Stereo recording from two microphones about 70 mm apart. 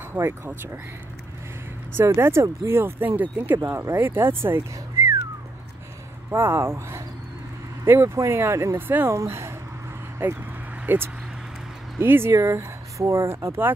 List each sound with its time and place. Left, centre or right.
0.1 s speech: right
2.0 s speech: right
3.5 s speech: right
6.3 s speech: right
9.1 s speech: right
10.2 s speech: right
12.4 s a sound: right
13.1 s speech: right